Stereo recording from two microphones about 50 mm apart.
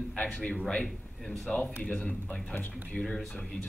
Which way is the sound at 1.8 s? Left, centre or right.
Left.